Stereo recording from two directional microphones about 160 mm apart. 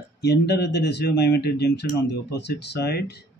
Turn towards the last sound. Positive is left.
turn(degrees=90)